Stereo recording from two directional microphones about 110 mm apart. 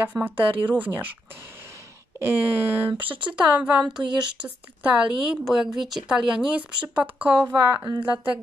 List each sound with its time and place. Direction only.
0.0 s speech: 15° right (ahead or behind)
2.1 s speech: 20° right (ahead or behind)
7.4 s a woman's voice: 30° right (ahead or behind)